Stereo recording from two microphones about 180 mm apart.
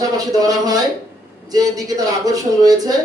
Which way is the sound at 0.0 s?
20° right (ahead or behind).